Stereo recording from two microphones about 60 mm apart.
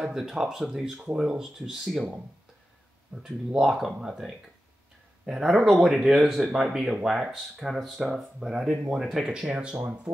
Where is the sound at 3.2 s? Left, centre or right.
Centre.